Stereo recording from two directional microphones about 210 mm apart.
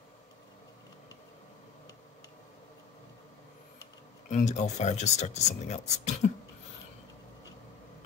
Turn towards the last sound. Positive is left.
turn(degrees=35)  # may be behind; listen again after turning